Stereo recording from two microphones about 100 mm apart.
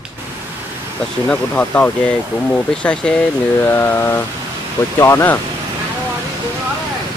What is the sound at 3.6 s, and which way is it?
Speech, 20° left (ahead or behind).